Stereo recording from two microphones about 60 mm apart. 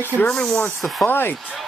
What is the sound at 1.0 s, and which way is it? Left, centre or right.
Speech, left.